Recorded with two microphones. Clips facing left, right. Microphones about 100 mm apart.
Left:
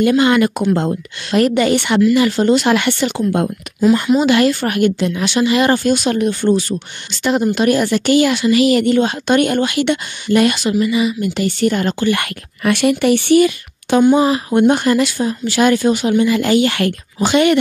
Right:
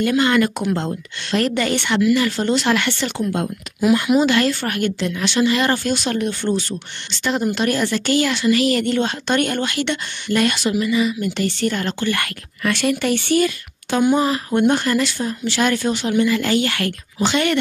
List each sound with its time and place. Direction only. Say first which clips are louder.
0.2 s speech: left 4 dB; 15° left (ahead or behind)